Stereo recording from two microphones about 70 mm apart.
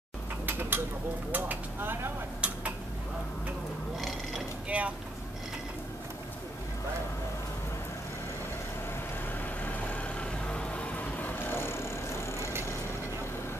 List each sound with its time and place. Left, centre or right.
0.5 s mechanisms: right
1.3 s speech: right
2.4 s tick-tock: centre
4.6 s speech: centre
9.4 s vehicle: left